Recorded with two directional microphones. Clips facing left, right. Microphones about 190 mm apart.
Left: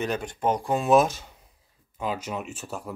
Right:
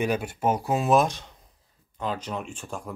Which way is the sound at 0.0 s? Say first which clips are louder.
Right 2 dB; 10° right (ahead or behind).